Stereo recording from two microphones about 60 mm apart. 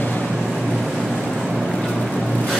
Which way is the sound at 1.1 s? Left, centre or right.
Centre.